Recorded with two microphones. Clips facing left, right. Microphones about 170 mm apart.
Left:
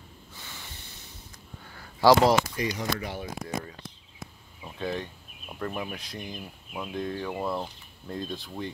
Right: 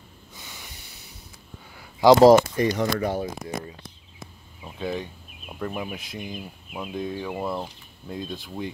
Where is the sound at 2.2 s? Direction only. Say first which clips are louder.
Right 9 dB; 50° right (ahead or behind).